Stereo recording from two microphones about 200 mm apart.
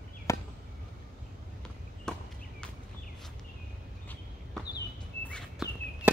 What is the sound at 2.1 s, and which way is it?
Chop, 5° left (ahead or behind).